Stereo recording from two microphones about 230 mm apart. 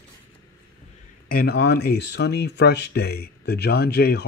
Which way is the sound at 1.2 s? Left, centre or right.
Left.